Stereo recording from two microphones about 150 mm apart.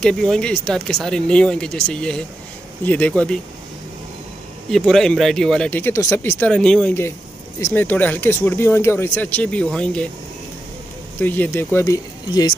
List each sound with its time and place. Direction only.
0.0 s speech: 5° left (ahead or behind)
4.6 s speech: 5° left (ahead or behind)
6.5 s speech: 5° left (ahead or behind)
11.1 s speech: 10° left (ahead or behind)